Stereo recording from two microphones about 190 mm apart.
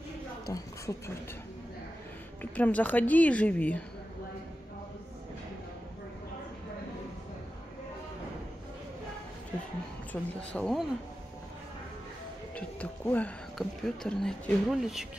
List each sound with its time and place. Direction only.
0.5 s a woman's voice: 15° left (ahead or behind)
2.5 s a woman's voice: 10° left (ahead or behind)
10.1 s speech: 5° left (ahead or behind)
12.5 s speech: 10° left (ahead or behind)